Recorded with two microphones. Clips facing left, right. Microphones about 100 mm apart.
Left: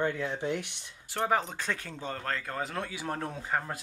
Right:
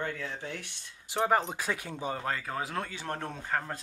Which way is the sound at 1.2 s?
Centre (ahead or behind).